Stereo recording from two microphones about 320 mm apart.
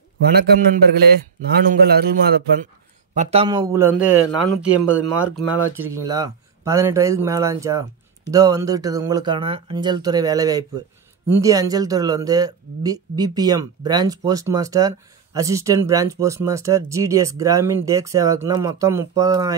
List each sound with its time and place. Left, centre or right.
0.2 s a man's voice: right
3.2 s speech: centre
4.6 s speech: centre
5.9 s speech: centre